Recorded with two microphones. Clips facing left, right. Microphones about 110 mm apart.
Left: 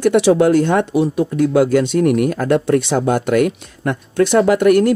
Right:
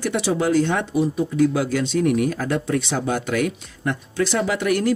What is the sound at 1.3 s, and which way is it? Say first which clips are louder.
Speech: left 6 dB; 55° left (ahead or behind).